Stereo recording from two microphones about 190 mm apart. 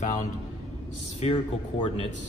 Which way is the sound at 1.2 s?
30° left (ahead or behind).